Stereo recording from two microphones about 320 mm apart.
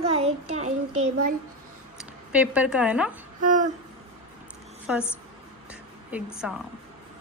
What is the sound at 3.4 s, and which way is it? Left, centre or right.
Speech, right.